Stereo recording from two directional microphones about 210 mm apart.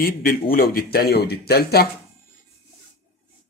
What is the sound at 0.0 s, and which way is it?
Speech, 45° left (ahead or behind).